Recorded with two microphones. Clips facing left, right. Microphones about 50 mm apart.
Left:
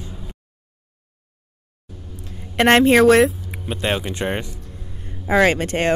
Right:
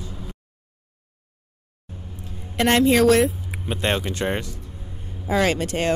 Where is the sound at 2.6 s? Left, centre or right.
Left.